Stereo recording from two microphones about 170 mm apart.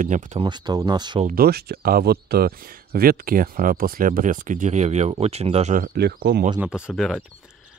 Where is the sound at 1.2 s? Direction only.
60° right (ahead or behind); by 5.7 s 40° right (ahead or behind).